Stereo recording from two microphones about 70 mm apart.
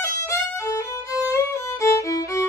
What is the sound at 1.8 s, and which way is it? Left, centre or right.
Music, left.